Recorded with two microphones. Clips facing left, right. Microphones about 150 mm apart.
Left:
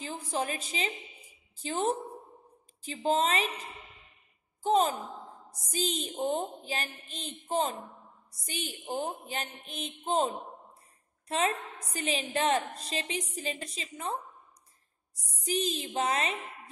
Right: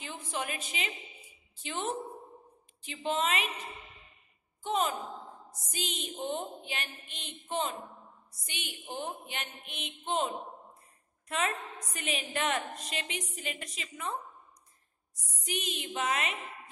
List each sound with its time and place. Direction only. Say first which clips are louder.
0.0 s a woman's voice: left 4 dB; 35° left (ahead or behind)
4.6 s a woman's voice: left 5 dB; 35° left (ahead or behind)
15.4 s speech: left 6 dB; 35° left (ahead or behind)